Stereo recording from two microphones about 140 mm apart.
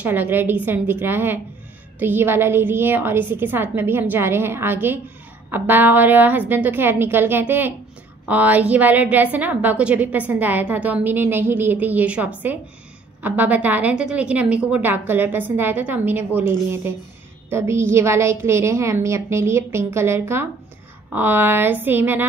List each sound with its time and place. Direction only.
0.0 s a woman's voice: 15° right (ahead or behind)